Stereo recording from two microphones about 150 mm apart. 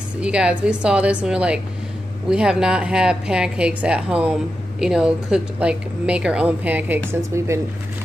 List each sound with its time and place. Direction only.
0.2 s a woman's voice: 5° right (ahead or behind)